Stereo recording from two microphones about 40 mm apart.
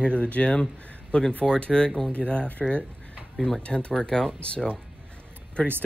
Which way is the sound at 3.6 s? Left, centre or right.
Left.